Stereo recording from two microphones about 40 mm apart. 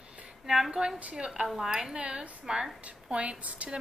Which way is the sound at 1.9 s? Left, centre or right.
Centre.